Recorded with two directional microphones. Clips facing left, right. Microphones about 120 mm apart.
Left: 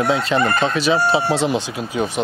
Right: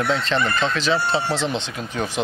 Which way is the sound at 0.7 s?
10° left (ahead or behind).